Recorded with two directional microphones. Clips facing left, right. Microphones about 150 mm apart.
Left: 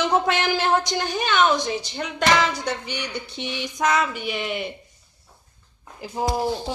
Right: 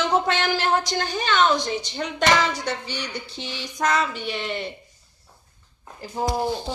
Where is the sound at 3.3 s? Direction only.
20° left (ahead or behind).